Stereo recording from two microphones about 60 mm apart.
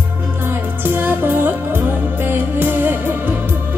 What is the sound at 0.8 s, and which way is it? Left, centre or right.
Music, right.